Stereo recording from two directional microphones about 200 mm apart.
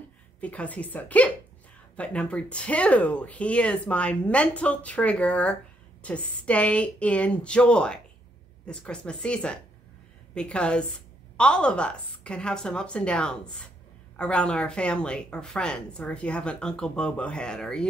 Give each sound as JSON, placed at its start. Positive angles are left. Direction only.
{"t": 0.4, "sound": "speech", "side_deg": 5}